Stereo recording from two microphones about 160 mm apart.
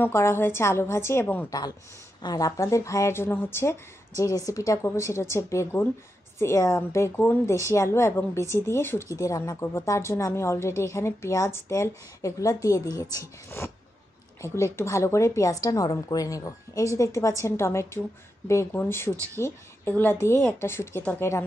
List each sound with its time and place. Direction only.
0.0 s a woman's voice: 15° left (ahead or behind)